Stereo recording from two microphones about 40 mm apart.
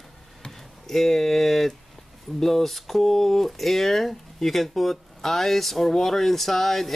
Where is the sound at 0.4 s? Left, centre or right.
Centre.